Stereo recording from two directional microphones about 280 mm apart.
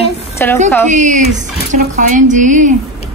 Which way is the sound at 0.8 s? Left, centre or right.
Right.